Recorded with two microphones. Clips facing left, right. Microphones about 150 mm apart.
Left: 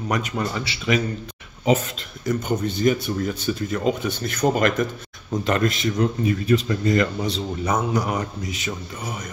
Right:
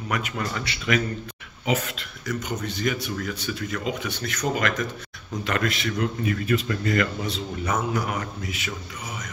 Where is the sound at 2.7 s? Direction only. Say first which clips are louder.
Left 6 dB; 30° left (ahead or behind).